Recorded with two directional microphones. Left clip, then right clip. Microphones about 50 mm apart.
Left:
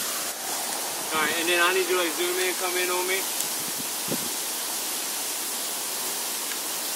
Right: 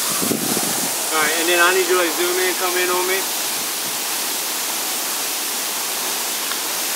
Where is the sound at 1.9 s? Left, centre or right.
Centre.